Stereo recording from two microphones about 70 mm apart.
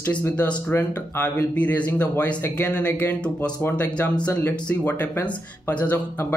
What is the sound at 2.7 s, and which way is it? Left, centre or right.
Speech, centre.